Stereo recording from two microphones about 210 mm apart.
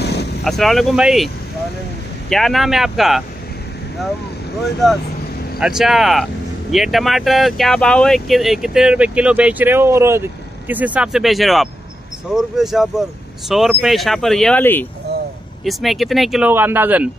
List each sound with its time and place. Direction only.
0.0 s vehicle: 50° left (ahead or behind)
0.4 s speech: centre (ahead or behind)
5.6 s speech: centre (ahead or behind)